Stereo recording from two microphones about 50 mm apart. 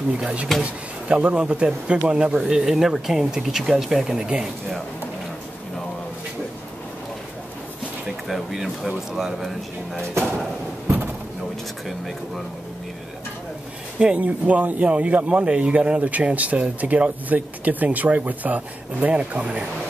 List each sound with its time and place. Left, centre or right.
0.2 s speech: centre
8.3 s speech: centre
13.9 s speech: right